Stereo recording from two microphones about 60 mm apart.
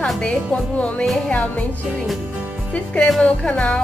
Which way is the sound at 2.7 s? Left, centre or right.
Centre.